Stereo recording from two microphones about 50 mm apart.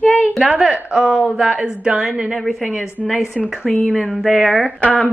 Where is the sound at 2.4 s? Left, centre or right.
Centre.